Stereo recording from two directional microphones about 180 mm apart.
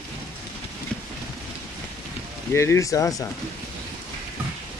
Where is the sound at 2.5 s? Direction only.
15° left (ahead or behind).